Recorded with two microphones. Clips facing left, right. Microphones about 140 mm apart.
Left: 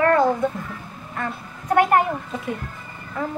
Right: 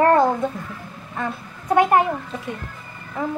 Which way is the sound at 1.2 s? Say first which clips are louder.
Right 2 dB; 15° right (ahead or behind).